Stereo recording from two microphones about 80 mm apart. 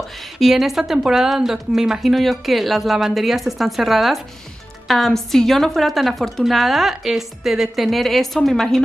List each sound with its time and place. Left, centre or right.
0.4 s a woman's voice: centre